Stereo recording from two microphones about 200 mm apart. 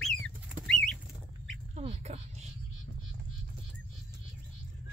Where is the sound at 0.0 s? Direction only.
Centre (ahead or behind).